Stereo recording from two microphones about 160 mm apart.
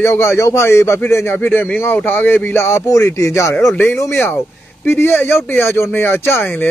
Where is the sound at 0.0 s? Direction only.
15° left (ahead or behind).